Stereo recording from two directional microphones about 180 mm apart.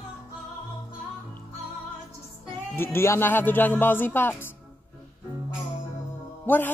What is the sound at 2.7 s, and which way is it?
Speech, 15° left (ahead or behind).